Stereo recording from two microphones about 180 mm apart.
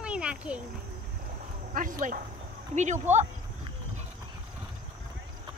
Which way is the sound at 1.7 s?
50° right (ahead or behind).